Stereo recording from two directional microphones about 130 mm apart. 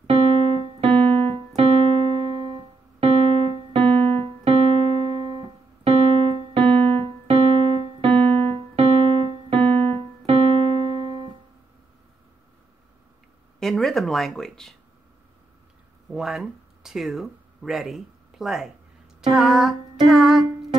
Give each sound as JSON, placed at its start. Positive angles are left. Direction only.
{"t": 0.0, "sound": "keyboard", "side_deg": -50}
{"t": 13.6, "sound": "speech", "side_deg": 0}
{"t": 16.1, "sound": "speech", "side_deg": -5}
{"t": 19.3, "sound": "music", "side_deg": -5}